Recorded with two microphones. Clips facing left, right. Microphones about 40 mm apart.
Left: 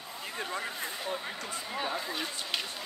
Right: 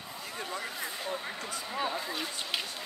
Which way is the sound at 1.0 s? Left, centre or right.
Centre.